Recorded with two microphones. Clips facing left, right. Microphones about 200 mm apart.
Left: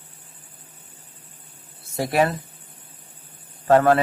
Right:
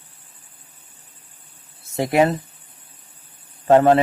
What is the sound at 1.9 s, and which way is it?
Speech, 20° right (ahead or behind).